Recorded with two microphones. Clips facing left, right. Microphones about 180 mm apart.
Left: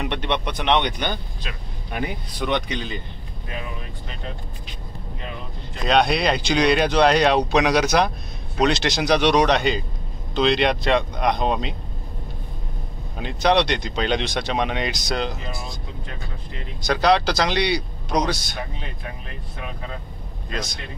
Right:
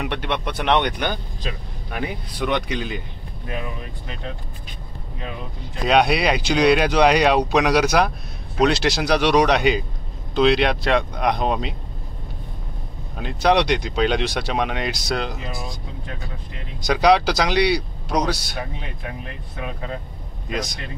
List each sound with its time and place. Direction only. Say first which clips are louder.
0.0 s speech: even; 5° right (ahead or behind)
1.5 s speech: right 6 dB; 30° right (ahead or behind)
1.9 s speech: even; centre (ahead or behind)
5.9 s speech: right 1 dB; 5° right (ahead or behind)
13.2 s speech: right 1 dB; 5° right (ahead or behind)
16.8 s speech: right 2 dB; 10° right (ahead or behind)
20.4 s speech: right 3 dB; 10° right (ahead or behind)